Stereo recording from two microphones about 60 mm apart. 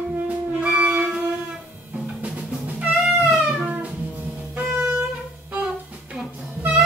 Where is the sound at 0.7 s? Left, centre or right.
Centre.